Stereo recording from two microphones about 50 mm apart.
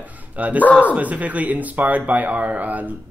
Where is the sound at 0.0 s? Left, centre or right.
Right.